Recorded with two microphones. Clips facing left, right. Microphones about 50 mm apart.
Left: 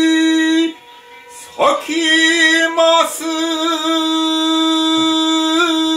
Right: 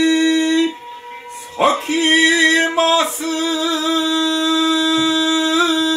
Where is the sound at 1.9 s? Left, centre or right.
Right.